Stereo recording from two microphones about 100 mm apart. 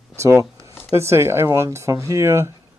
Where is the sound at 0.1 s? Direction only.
30° right (ahead or behind).